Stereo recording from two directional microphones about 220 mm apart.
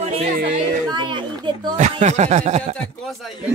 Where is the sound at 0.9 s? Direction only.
20° right (ahead or behind).